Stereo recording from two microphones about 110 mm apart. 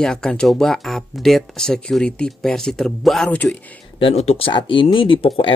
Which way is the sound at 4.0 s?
65° left (ahead or behind).